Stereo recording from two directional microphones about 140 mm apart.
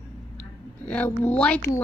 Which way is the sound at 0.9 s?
10° left (ahead or behind).